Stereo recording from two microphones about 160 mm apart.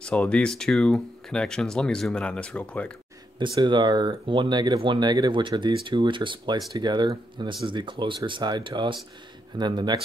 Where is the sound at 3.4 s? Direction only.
30° right (ahead or behind).